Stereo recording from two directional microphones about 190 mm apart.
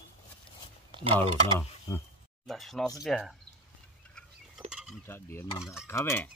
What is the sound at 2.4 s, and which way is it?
Speech, centre (ahead or behind).